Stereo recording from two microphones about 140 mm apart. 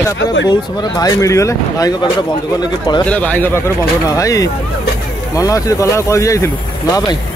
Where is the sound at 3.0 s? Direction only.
10° left (ahead or behind).